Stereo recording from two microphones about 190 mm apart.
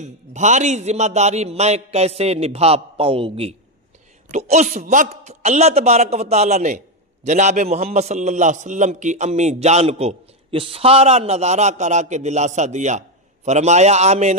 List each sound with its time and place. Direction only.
0.0 s a man's voice: 40° right (ahead or behind)